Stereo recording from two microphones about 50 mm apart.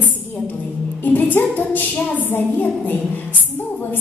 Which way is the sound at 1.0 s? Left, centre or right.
Left.